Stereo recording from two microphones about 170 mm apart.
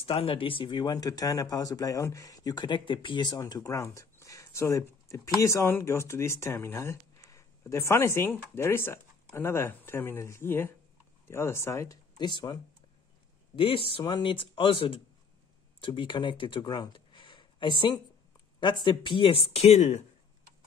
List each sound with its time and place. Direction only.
0.0 s speech: 35° left (ahead or behind)
13.6 s speech: 30° left (ahead or behind)